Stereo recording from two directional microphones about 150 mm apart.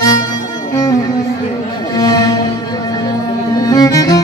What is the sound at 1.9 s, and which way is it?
Music, 25° left (ahead or behind).